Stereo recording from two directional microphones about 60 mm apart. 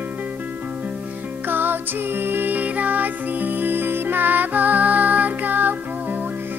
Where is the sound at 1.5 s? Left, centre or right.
Right.